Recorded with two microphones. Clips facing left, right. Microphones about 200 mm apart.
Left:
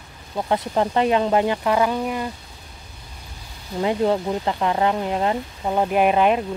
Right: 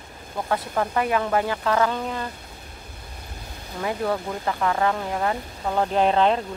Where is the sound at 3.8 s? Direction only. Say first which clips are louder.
Left 5 dB; 20° left (ahead or behind).